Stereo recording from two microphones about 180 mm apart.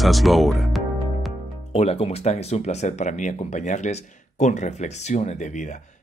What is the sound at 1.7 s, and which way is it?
Speech, 35° left (ahead or behind).